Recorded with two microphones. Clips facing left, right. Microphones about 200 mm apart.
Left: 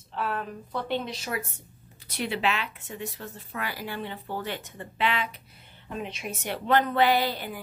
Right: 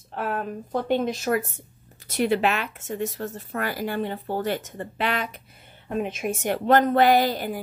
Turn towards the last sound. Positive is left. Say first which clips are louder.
# right 5 dB
turn(degrees=-45)  # may be behind; listen again after turning